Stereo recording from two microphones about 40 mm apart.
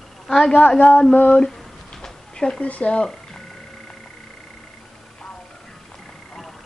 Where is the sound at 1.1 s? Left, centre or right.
Left.